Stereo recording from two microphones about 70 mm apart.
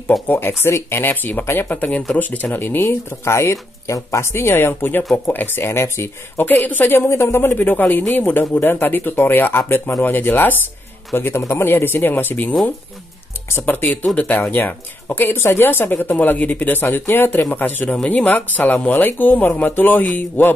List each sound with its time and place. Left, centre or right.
0.3 s speech: left